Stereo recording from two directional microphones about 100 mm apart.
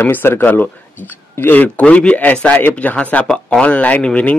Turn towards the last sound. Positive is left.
turn(degrees=15)  # may be behind; listen again after turning